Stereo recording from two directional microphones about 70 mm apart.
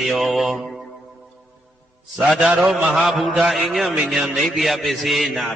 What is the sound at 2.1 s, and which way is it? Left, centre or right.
Speech, centre.